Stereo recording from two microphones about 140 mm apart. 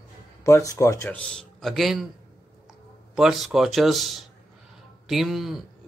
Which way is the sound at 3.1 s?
Centre (ahead or behind).